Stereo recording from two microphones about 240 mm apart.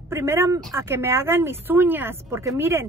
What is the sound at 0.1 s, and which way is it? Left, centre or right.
A woman's voice, centre.